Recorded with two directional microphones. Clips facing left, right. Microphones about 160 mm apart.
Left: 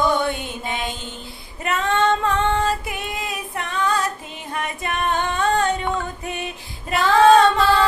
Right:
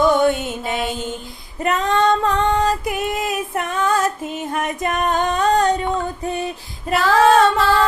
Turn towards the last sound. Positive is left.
turn(degrees=-5)  # may be behind; listen again after turning